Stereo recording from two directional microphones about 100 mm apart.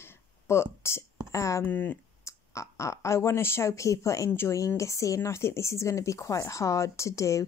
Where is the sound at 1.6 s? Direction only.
20° left (ahead or behind).